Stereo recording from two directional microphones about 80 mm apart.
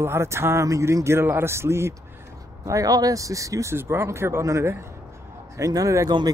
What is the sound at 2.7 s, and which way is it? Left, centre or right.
Speech, right.